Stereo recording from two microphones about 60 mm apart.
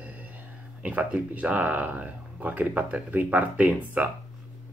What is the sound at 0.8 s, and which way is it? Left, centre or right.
Speech, right.